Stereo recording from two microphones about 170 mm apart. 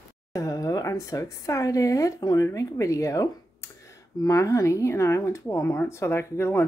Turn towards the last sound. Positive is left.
turn(degrees=15)  # may be behind; listen again after turning